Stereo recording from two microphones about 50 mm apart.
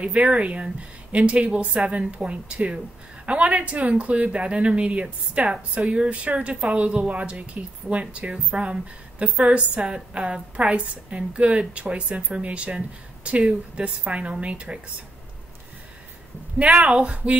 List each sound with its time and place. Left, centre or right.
0.0 s a woman's voice: right
16.8 s a woman's voice: right